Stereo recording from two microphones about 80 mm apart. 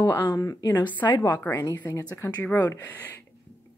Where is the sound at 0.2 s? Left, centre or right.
Left.